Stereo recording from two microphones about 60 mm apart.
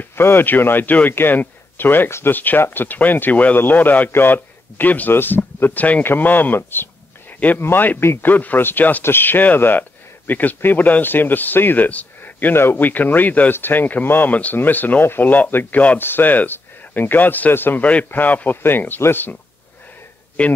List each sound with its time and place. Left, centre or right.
0.1 s speech: left
17.8 s speech: left
20.4 s a man's voice: centre